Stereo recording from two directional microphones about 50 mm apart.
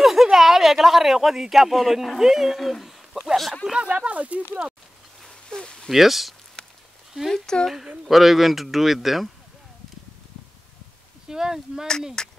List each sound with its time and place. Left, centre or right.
0.0 s speech: centre
3.7 s speech: right
5.3 s a sound: centre
5.9 s speech: centre
7.2 s speech: centre
7.6 s speech: centre
11.2 s speech: centre
12.2 s speech: centre